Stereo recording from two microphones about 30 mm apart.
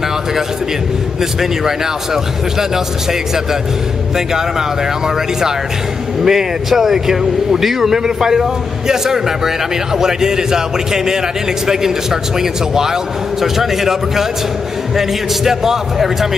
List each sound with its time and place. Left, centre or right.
4.3 s a man's voice: centre